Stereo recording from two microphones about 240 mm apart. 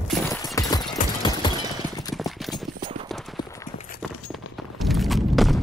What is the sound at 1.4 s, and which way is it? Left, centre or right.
Clip-clop, centre.